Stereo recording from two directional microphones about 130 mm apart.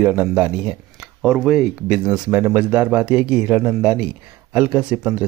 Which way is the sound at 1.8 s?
10° right (ahead or behind).